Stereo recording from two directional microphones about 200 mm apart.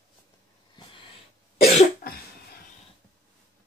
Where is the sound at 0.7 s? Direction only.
25° left (ahead or behind).